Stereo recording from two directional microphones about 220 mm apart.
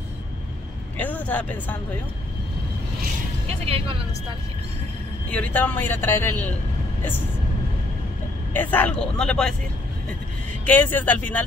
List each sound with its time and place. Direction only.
0.9 s speech: 5° left (ahead or behind)
3.4 s speech: 25° right (ahead or behind)
5.3 s speech: 5° left (ahead or behind)
8.5 s speech: 10° left (ahead or behind)
10.6 s speech: 10° left (ahead or behind)